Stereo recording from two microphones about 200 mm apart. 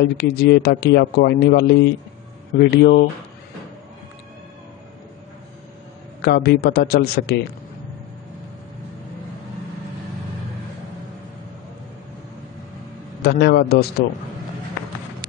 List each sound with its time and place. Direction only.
0.0 s a man's voice: 55° left (ahead or behind)
6.2 s a man's voice: 55° left (ahead or behind)
13.2 s a man's voice: 55° left (ahead or behind)